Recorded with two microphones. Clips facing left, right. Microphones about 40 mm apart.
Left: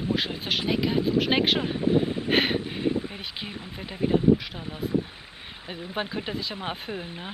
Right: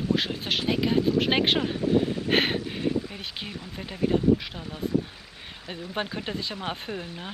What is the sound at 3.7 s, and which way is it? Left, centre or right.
Speech, centre.